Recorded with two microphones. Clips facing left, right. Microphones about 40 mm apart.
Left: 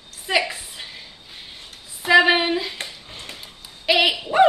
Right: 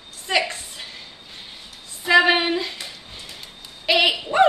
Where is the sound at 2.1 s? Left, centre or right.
Centre.